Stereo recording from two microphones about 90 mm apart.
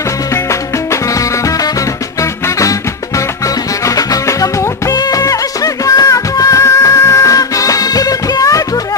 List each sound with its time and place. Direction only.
1.1 s music: 40° left (ahead or behind)
3.8 s music: 40° left (ahead or behind)